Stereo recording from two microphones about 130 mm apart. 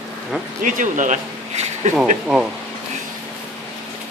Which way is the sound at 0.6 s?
85° right.